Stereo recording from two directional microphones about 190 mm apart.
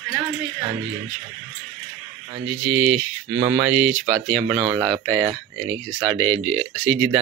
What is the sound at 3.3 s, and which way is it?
Speech, 20° right (ahead or behind).